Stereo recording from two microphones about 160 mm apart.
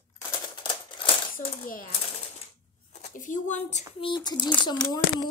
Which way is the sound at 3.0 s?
50° left (ahead or behind).